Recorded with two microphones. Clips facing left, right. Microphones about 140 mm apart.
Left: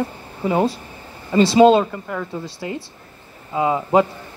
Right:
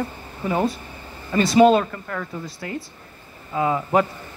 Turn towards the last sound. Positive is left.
turn(degrees=20)  # may be behind; listen again after turning